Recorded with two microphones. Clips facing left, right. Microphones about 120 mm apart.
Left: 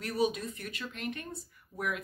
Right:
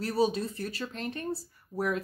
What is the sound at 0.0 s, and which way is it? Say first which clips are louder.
Speech: right 3 dB; 30° right (ahead or behind).